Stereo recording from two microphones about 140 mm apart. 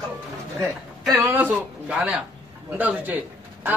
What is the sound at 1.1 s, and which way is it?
Speech, 25° right (ahead or behind).